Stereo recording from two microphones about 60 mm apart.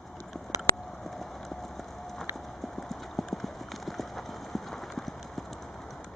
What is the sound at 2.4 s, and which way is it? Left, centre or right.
Clip-clop, centre.